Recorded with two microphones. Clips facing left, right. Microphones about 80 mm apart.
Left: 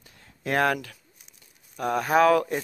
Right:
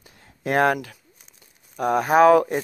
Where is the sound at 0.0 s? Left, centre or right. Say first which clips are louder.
Right 4 dB; centre.